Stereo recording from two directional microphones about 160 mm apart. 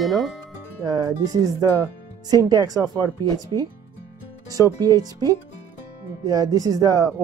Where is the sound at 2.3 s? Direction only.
25° right (ahead or behind).